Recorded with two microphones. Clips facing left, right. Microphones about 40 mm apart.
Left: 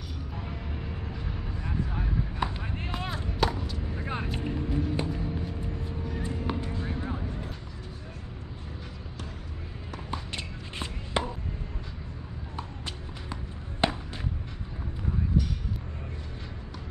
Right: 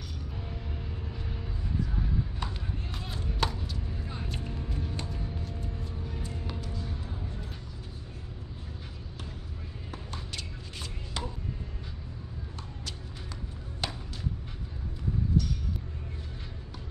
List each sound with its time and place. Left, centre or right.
1.8 s vehicle: left
2.6 s a sound: left
3.4 s chop: centre
3.9 s vehicle: left
4.4 s music: left
6.1 s music: left
10.1 s a sound: left
12.5 s music: left